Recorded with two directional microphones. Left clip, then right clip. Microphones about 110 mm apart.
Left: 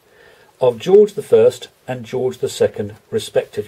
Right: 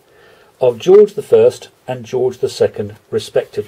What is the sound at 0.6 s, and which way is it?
Speech, 5° right (ahead or behind).